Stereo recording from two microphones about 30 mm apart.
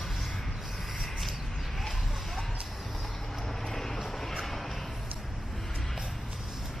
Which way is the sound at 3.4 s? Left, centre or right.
Centre.